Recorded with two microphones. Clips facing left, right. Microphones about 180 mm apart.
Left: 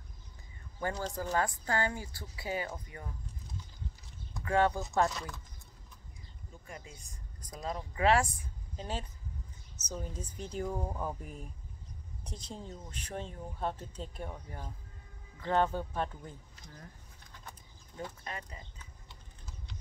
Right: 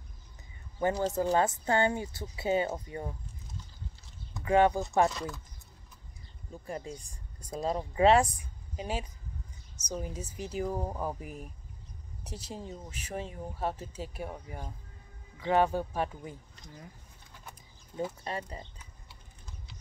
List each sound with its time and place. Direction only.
0.7 s speech: 20° right (ahead or behind)
4.5 s speech: 15° right (ahead or behind)
5.1 s speech: centre (ahead or behind)
6.5 s speech: 35° right (ahead or behind)
8.4 s a sound: 10° right (ahead or behind)
9.8 s speech: 10° right (ahead or behind)
18.2 s speech: 30° right (ahead or behind)